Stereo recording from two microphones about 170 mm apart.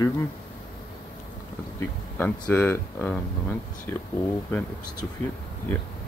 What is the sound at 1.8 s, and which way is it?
A man's voice, 10° left (ahead or behind).